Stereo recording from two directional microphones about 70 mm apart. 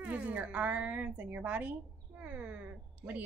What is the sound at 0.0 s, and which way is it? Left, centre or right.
A woman's voice, centre.